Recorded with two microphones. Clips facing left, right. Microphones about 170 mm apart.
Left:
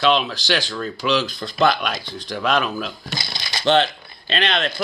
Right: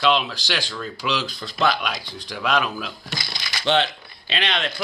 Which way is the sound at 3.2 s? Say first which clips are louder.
Left 3 dB; 30° left (ahead or behind).